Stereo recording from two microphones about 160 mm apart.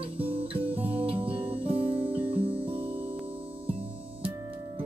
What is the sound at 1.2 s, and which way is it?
Guitar, 35° right (ahead or behind).